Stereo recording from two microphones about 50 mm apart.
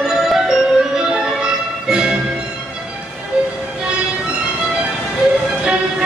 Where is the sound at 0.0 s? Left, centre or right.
Centre.